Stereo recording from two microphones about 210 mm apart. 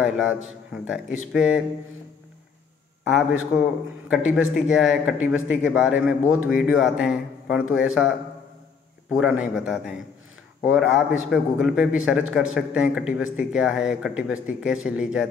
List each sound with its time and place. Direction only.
0.0 s speech: centre (ahead or behind)
3.0 s a man's voice: 5° right (ahead or behind)
9.1 s speech: 5° right (ahead or behind)